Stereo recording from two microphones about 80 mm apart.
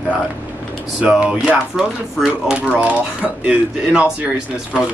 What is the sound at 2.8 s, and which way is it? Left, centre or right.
Speech, centre.